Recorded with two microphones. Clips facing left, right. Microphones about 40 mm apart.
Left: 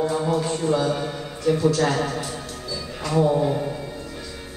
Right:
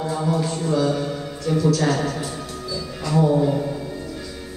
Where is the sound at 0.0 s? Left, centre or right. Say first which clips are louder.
Left 1 dB; centre.